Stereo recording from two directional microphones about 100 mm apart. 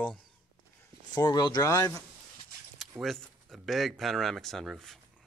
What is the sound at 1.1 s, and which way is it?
Speech, 45° left (ahead or behind).